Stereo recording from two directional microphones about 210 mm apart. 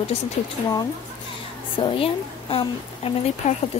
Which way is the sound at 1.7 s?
25° left (ahead or behind).